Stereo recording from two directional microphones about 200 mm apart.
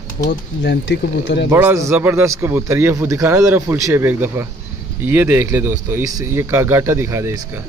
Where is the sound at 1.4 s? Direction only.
10° right (ahead or behind).